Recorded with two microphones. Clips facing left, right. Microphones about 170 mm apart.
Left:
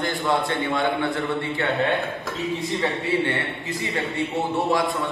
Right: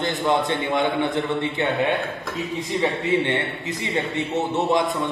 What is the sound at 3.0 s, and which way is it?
A man's voice, 20° right (ahead or behind).